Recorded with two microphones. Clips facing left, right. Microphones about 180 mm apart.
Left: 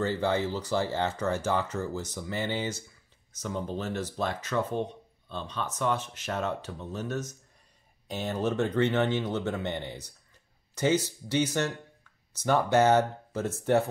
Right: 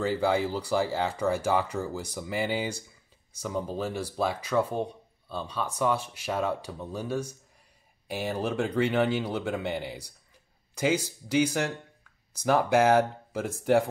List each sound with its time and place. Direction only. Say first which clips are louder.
0.2 s speech: right 2 dB; 10° right (ahead or behind)
12.6 s speech: even; 10° right (ahead or behind)